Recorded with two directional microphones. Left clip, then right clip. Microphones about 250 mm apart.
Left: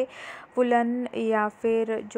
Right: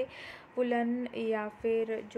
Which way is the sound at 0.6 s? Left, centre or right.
Left.